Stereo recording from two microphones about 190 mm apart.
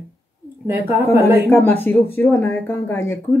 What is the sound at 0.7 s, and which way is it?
Speech, 10° right (ahead or behind).